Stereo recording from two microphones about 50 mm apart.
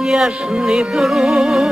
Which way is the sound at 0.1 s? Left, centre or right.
Centre.